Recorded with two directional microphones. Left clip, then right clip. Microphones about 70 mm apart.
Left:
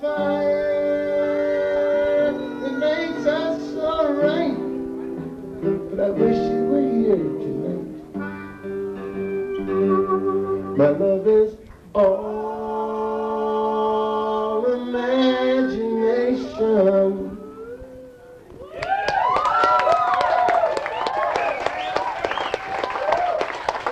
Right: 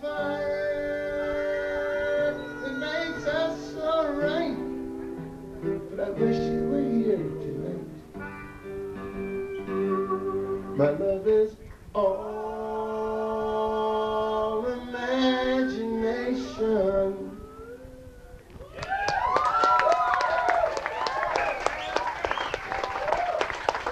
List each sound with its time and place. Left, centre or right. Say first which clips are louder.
0.0 s music: left 8 dB; right
9.2 s music: left 8 dB; right
18.8 s a sound: left 6 dB; right